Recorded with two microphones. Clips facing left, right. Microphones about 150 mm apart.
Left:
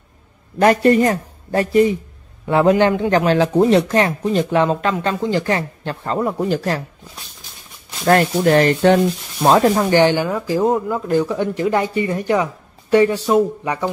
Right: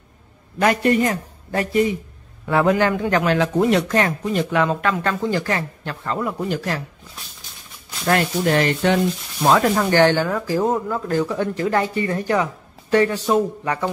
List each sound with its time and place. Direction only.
0.6 s speech: 35° left (ahead or behind)
8.1 s speech: 45° left (ahead or behind)
9.8 s speech: 15° left (ahead or behind)